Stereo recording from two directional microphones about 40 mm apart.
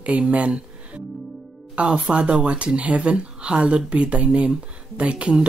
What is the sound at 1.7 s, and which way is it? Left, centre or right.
Speech, right.